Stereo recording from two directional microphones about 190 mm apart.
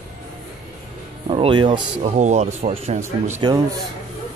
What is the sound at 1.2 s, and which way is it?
Speech, 30° right (ahead or behind).